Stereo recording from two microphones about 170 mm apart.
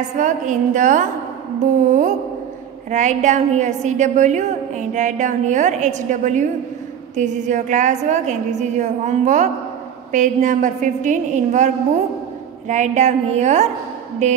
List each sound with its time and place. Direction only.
0.2 s a woman's voice: 50° right (ahead or behind)